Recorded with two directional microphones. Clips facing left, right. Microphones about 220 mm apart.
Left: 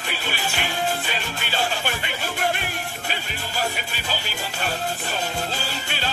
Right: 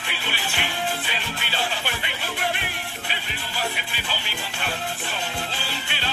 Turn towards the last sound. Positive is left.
turn(degrees=45)  # may be behind; listen again after turning